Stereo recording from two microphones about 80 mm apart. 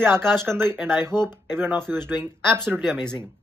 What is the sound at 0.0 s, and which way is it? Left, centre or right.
Speech, right.